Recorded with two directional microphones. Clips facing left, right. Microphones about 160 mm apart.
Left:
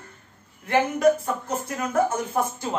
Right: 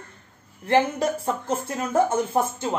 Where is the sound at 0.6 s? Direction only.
30° right (ahead or behind).